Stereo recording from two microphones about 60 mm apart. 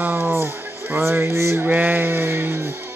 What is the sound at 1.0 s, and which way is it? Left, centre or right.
Music, right.